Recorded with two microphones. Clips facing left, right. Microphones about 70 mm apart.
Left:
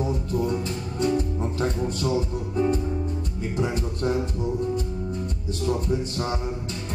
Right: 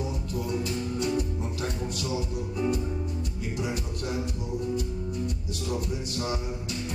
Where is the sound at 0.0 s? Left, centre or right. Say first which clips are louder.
Left 7 dB; left.